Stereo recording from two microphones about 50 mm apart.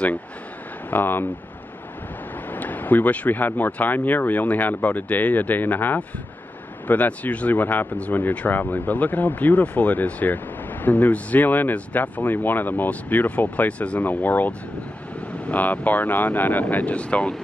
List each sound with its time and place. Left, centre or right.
0.8 s speech: left
2.5 s speech: left